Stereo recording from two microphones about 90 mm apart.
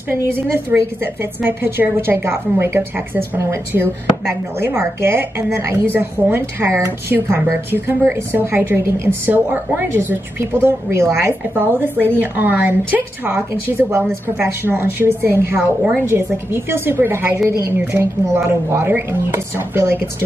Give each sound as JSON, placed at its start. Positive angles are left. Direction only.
{"t": 0.1, "sound": "a woman's voice", "side_deg": -25}
{"t": 4.6, "sound": "a woman's voice", "side_deg": -25}